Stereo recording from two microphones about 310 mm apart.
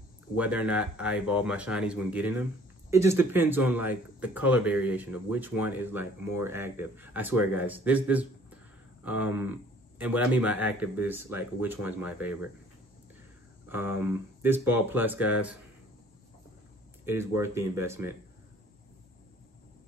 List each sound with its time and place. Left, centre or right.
0.4 s speech: centre
13.7 s speech: centre
17.0 s speech: centre